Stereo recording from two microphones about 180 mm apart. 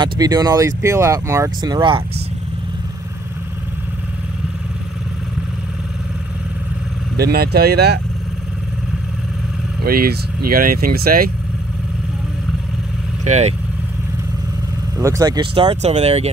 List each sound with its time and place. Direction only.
0.0 s speech: 20° right (ahead or behind)
7.2 s speech: 60° right (ahead or behind)
9.8 s speech: 55° right (ahead or behind)
13.2 s speech: 40° right (ahead or behind)
15.0 s speech: 20° right (ahead or behind); by 16.3 s 35° right (ahead or behind)